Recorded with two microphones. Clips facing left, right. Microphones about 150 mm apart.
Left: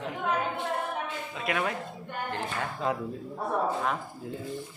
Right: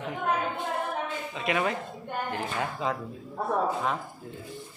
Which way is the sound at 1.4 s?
Centre (ahead or behind).